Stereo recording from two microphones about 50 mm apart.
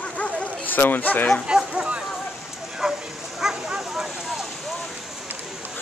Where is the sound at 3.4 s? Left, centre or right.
Centre.